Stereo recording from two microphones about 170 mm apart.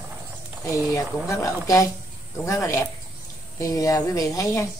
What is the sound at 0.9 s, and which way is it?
A woman's voice, 20° left (ahead or behind).